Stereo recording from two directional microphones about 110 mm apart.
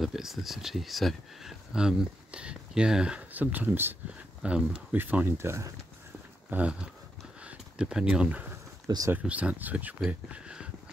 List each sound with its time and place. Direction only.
0.0 s speech: 5° right (ahead or behind)
4.4 s speech: 5° right (ahead or behind)
4.9 s speech: 20° right (ahead or behind)
6.5 s speech: 10° right (ahead or behind)
7.4 s a sound: 5° right (ahead or behind)
8.8 s speech: 35° right (ahead or behind)
9.2 s speech: 10° right (ahead or behind)